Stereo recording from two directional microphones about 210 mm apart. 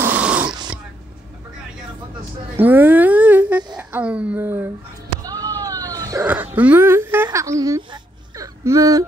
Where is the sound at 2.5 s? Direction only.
10° right (ahead or behind).